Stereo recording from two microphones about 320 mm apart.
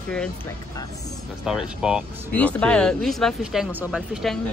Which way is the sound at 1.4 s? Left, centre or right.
Centre.